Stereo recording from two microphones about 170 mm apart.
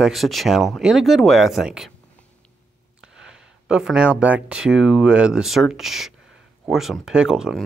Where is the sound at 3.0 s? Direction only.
5° right (ahead or behind).